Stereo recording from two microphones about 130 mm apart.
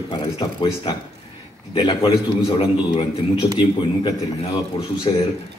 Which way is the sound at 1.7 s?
35° left (ahead or behind).